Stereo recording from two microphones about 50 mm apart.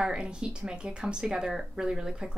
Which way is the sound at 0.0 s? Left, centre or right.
Centre.